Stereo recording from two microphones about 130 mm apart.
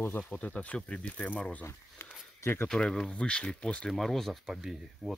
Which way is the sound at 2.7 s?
5° left (ahead or behind).